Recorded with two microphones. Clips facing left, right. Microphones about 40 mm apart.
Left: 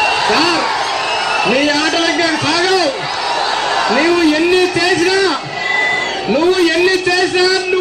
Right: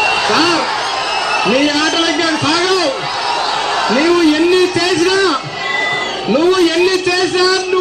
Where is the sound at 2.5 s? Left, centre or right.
Centre.